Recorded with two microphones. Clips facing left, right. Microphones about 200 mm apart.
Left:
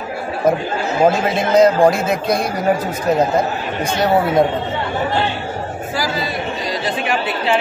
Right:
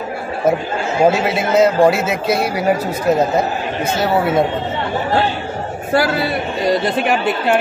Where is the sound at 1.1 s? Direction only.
5° right (ahead or behind).